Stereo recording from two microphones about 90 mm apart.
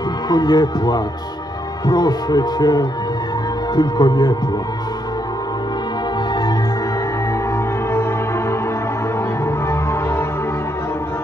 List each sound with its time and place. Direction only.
0.3 s speech: 50° left (ahead or behind)
7.5 s music: 30° left (ahead or behind)
9.7 s music: 30° left (ahead or behind)